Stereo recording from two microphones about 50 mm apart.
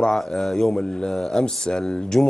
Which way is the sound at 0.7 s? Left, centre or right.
Centre.